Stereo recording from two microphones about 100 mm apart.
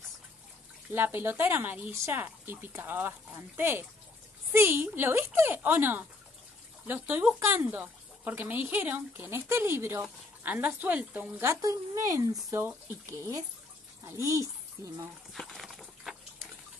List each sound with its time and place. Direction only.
0.9 s a woman's voice: 20° right (ahead or behind)
11.4 s speech: 30° right (ahead or behind)
12.6 s speech: 20° right (ahead or behind)
15.3 s a sound: centre (ahead or behind)